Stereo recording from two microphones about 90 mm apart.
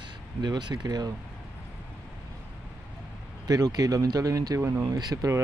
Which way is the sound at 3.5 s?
45° right (ahead or behind).